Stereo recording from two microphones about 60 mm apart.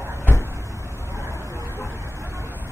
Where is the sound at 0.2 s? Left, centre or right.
Left.